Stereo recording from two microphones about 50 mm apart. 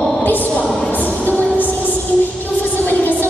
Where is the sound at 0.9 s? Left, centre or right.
Left.